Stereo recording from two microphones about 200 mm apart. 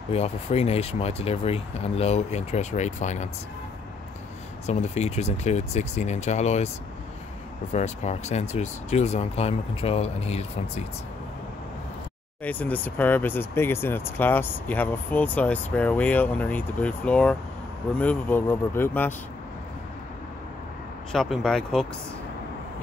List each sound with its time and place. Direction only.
0.1 s speech: 30° left (ahead or behind)
4.6 s speech: 35° left (ahead or behind)
7.7 s speech: 35° left (ahead or behind)
12.4 s speech: 10° left (ahead or behind)
21.1 s speech: centre (ahead or behind)